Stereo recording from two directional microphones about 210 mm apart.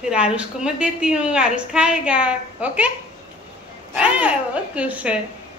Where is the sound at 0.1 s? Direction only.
5° right (ahead or behind).